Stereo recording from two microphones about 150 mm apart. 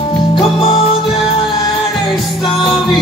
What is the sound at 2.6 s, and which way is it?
Music, 35° left (ahead or behind).